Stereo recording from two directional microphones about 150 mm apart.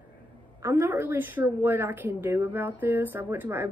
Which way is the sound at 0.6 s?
15° right (ahead or behind).